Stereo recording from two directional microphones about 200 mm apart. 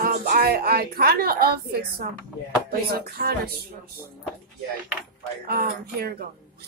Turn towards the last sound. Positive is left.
turn(degrees=-50)  # may be behind; listen again after turning